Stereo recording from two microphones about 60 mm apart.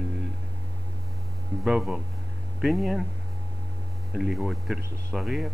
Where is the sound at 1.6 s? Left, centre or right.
Centre.